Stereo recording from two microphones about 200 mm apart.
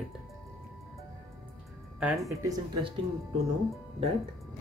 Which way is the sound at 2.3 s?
15° right (ahead or behind).